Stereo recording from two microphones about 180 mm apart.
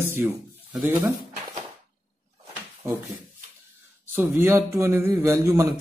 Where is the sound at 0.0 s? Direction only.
10° right (ahead or behind).